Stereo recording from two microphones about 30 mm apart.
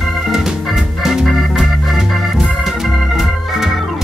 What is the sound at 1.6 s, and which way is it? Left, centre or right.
Organ, centre.